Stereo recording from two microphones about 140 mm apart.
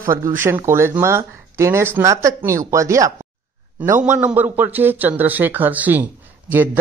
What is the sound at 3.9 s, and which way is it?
Speech, 60° right (ahead or behind).